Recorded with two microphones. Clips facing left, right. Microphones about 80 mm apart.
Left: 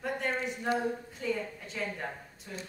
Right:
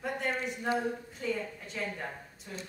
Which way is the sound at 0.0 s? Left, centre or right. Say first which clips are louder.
Left 1 dB; centre.